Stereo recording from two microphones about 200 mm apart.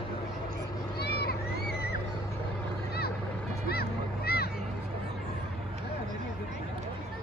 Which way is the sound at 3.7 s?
50° left (ahead or behind).